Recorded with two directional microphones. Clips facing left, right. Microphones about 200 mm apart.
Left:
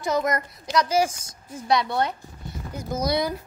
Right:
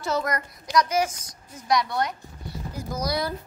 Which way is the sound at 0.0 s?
20° left (ahead or behind).